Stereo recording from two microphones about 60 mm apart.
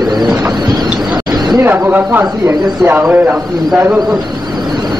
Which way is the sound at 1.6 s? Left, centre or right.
Right.